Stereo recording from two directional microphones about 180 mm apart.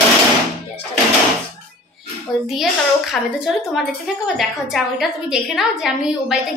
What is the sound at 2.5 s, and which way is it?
A woman's voice, centre (ahead or behind).